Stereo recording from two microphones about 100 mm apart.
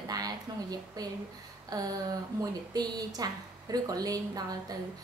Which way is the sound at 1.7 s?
40° right (ahead or behind).